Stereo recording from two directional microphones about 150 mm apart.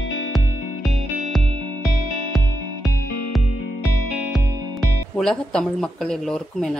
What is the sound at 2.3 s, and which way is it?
Music, centre (ahead or behind).